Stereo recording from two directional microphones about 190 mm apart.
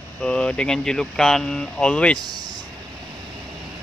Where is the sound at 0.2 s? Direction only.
5° left (ahead or behind).